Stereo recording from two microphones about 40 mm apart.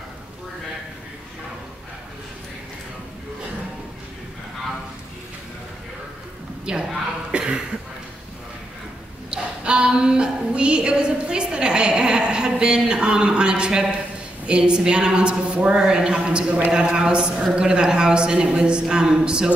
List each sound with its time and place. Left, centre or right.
6.6 s a woman's voice: centre
7.2 s cough: right
9.3 s a sound: right
14.4 s a woman's voice: right